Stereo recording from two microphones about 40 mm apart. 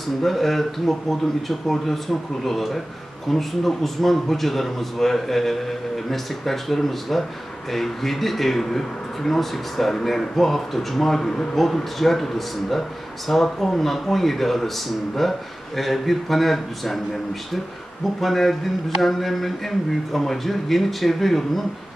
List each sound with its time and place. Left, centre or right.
0.2 s speech: centre